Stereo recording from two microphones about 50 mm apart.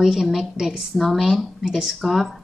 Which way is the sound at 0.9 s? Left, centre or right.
Centre.